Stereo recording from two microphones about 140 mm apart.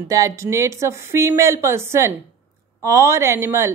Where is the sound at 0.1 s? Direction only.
20° right (ahead or behind).